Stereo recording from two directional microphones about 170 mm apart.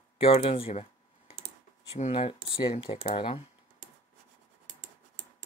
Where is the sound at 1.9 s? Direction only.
35° left (ahead or behind).